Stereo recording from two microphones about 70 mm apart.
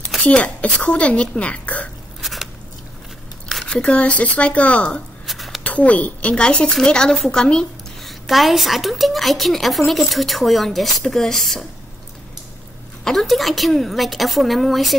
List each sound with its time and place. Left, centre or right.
0.2 s speech: centre
2.2 s biting: centre
3.6 s speech: centre
5.2 s a sound: centre
5.6 s speech: left
8.1 s a woman's voice: centre
13.0 s a woman's voice: centre